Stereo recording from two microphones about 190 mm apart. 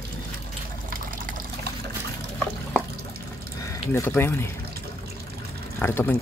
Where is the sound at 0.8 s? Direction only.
50° right (ahead or behind).